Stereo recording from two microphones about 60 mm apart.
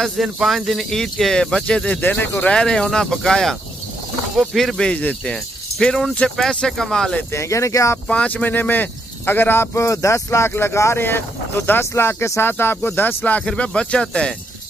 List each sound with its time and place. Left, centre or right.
0.0 s speech: centre
2.0 s speech: left
2.4 s speech: centre
4.6 s speech: centre
4.9 s speech: left
7.3 s speech: left
8.1 s speech: left
9.8 s speech: left
10.5 s speech: left
13.5 s speech: centre